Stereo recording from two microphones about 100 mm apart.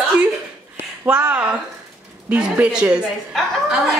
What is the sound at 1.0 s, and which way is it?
A woman's voice, 15° right (ahead or behind).